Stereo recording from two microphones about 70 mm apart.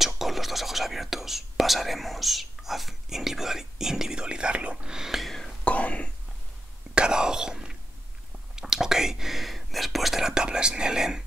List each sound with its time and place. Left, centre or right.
0.0 s whispering: centre
5.6 s whispering: centre
7.0 s whispering: centre